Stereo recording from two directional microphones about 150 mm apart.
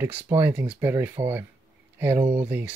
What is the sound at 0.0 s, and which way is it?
Speech, 15° right (ahead or behind).